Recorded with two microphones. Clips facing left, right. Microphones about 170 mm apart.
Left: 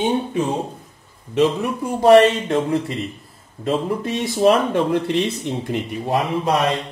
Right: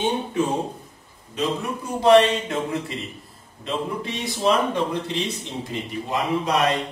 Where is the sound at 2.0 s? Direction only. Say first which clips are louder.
Left 4 dB; 45° left (ahead or behind).